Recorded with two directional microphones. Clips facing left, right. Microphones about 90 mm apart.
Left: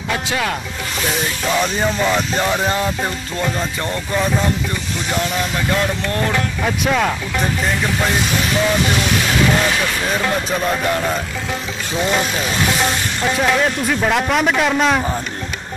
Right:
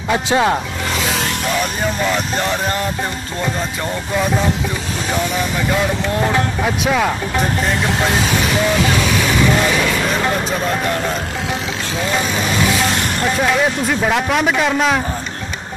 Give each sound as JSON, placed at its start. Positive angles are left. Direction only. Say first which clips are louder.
{"t": 0.1, "sound": "speech", "louder": "right 6 dB", "side_deg": -30}
{"t": 2.0, "sound": "a man's voice", "louder": "left 1 dB", "side_deg": 5}
{"t": 6.6, "sound": "speech", "louder": "left 1 dB", "side_deg": -5}
{"t": 13.4, "sound": "a man's voice", "louder": "even", "side_deg": -5}